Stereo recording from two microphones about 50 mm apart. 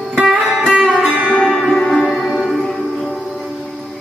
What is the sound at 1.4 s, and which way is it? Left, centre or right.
Music, centre.